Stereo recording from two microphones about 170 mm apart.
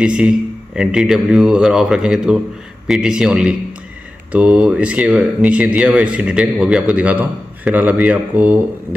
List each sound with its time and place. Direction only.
0.0 s a man's voice: 5° right (ahead or behind)